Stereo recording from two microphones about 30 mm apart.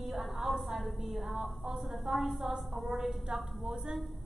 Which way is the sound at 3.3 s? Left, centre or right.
Right.